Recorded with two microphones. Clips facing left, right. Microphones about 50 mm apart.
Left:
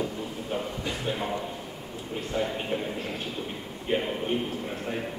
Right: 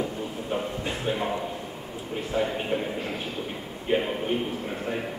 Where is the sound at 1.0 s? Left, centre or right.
Centre.